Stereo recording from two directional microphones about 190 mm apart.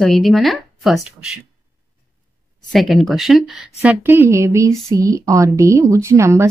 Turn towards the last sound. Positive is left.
turn(degrees=-15)  # may be behind; listen again after turning